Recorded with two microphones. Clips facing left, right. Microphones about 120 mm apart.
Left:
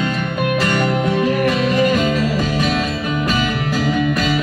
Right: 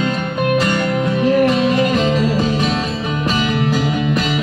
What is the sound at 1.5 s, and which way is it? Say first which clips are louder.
Music: right 1 dB; 25° right (ahead or behind).